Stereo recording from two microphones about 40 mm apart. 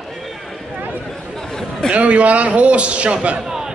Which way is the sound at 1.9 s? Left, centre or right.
Right.